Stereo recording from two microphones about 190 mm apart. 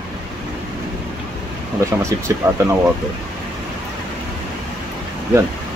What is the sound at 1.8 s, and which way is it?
Speech, 15° right (ahead or behind).